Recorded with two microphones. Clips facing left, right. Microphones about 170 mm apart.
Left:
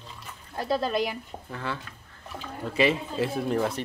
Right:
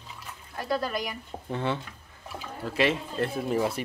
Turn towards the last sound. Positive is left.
turn(degrees=-5)  # may be behind; listen again after turning